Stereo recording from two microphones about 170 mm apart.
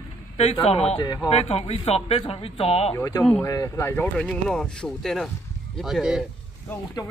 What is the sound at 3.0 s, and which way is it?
Speech, 20° left (ahead or behind).